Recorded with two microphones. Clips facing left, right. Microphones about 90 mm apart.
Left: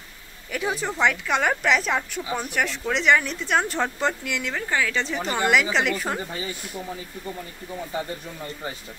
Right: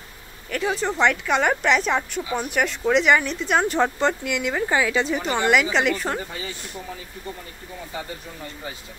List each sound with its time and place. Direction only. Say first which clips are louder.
0.5 s speech: right 3 dB; 5° left (ahead or behind)
4.6 s a woman's voice: right 4 dB; 15° right (ahead or behind)
5.0 s speech: right 2 dB; 5° right (ahead or behind)